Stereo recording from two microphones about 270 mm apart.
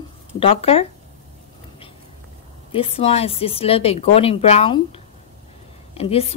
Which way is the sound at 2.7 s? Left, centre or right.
Left.